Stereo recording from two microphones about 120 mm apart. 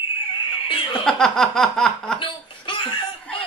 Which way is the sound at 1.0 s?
5° left (ahead or behind).